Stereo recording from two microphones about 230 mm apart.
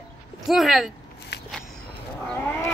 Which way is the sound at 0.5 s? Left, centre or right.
Centre.